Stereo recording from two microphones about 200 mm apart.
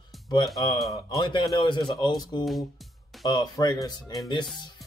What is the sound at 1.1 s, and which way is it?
Speech, 25° left (ahead or behind).